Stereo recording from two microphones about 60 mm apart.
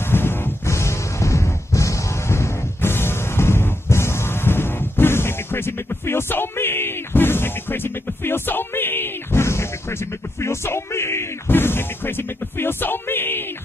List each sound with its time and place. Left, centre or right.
0.1 s music: left